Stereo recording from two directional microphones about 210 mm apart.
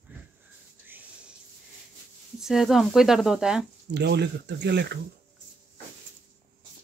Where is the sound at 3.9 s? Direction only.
55° right (ahead or behind).